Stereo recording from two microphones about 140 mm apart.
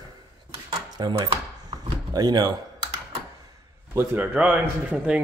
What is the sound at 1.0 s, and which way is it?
Speech, 30° right (ahead or behind).